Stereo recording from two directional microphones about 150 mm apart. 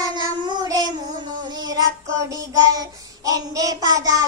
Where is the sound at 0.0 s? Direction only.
25° right (ahead or behind).